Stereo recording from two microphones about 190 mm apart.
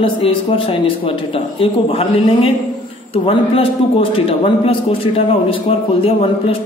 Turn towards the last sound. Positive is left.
turn(degrees=30)  # may be behind; listen again after turning